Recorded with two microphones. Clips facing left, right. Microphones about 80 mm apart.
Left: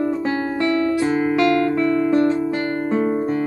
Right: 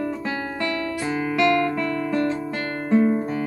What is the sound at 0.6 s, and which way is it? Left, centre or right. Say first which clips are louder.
Music: left 10 dB; left.